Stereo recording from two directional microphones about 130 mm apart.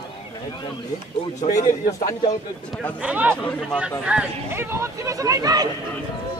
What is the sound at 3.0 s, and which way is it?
Speech, 10° right (ahead or behind).